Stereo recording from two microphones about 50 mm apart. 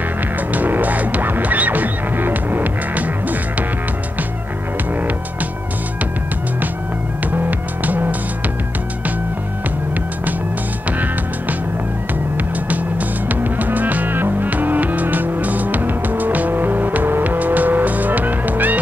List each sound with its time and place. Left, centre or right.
0.5 s music: right
7.8 s music: right
13.3 s music: right